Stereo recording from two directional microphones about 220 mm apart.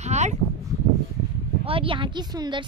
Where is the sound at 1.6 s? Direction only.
25° right (ahead or behind).